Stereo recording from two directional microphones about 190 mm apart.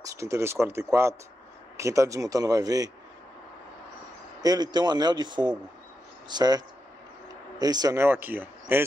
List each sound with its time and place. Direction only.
0.0 s speech: 15° right (ahead or behind)
4.4 s speech: 20° right (ahead or behind)